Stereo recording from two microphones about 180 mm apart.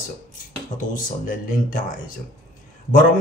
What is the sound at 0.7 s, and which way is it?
Speech, 50° left (ahead or behind).